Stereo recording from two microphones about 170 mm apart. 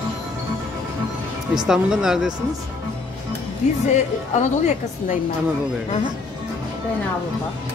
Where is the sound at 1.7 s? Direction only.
5° right (ahead or behind).